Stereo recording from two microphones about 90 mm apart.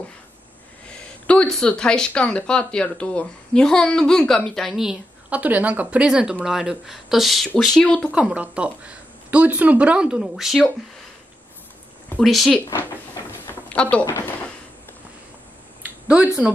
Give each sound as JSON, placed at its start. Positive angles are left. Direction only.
{"t": 0.8, "sound": "a sound", "side_deg": 15}
{"t": 1.5, "sound": "speech", "side_deg": 10}
{"t": 5.3, "sound": "speech", "side_deg": -15}
{"t": 8.1, "sound": "speech", "side_deg": -10}
{"t": 12.2, "sound": "speech", "side_deg": 0}
{"t": 12.7, "sound": "vehicle", "side_deg": 30}
{"t": 13.7, "sound": "speech", "side_deg": 15}
{"t": 15.8, "sound": "a sound", "side_deg": -15}